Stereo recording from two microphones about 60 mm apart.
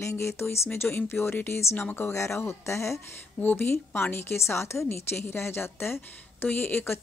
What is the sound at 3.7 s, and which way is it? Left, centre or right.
A woman's voice, left.